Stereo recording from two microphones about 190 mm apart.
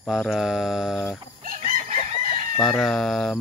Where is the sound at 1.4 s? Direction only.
45° right (ahead or behind).